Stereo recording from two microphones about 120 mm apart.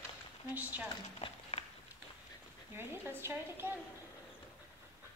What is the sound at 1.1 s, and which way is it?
Run, 55° left (ahead or behind).